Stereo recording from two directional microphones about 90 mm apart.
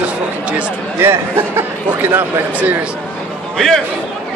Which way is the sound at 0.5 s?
15° right (ahead or behind).